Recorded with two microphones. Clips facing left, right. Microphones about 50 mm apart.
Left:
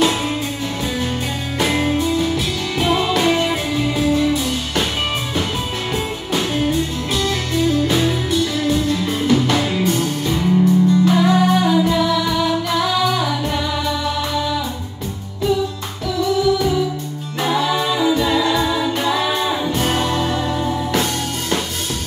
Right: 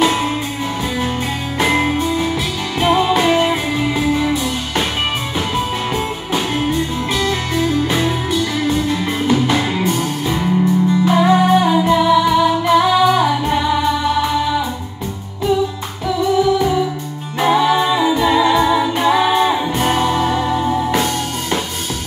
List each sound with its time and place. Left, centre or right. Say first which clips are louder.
0.0 s music: right 2 dB; centre
1.6 s music: right 2 dB; centre
5.9 s music: right 2 dB; centre
16.3 s music: right 2 dB; right